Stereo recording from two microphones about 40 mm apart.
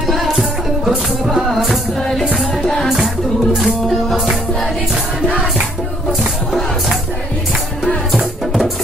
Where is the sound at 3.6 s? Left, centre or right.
Centre.